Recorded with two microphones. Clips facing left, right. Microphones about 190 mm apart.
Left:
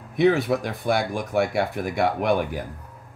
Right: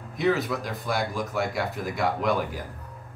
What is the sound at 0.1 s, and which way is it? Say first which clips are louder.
Speech: left 5 dB; 60° left (ahead or behind).